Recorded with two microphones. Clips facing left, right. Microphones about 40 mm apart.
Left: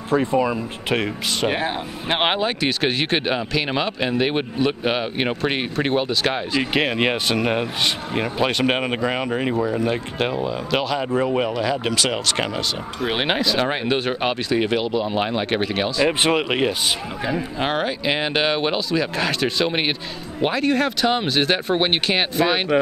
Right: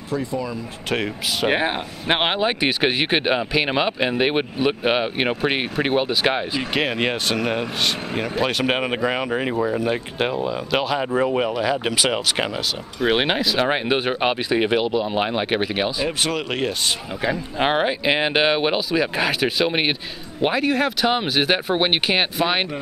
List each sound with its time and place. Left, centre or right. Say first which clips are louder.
0.1 s speech: left 6 dB; left
0.9 s speech: left 1 dB; centre
1.5 s speech: right 2 dB; right
6.6 s speech: left 4 dB; centre
13.7 s speech: right 1 dB; centre
16.1 s speech: left 4 dB; left
17.2 s speech: right 4 dB; centre